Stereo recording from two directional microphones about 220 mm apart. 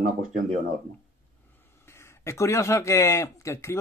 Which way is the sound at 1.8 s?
10° left (ahead or behind).